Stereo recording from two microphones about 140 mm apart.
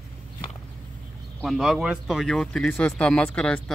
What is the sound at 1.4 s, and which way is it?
Speech, centre (ahead or behind).